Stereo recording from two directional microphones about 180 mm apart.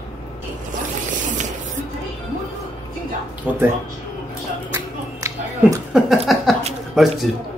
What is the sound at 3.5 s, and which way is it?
Speech, 10° right (ahead or behind).